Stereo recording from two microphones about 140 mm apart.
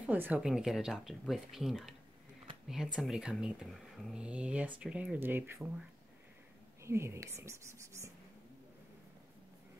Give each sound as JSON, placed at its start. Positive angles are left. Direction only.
{"t": 0.0, "sound": "speech", "side_deg": -10}
{"t": 6.8, "sound": "speech", "side_deg": -20}